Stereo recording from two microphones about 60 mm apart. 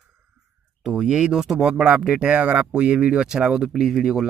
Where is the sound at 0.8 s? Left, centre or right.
Centre.